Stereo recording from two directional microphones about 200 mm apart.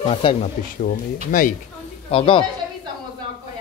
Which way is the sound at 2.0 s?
25° left (ahead or behind).